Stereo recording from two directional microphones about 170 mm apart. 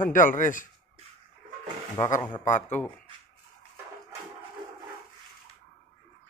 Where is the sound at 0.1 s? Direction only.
50° left (ahead or behind).